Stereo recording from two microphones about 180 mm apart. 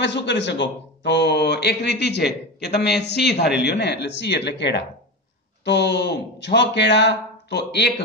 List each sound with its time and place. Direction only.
0.0 s a man's voice: 75° left (ahead or behind)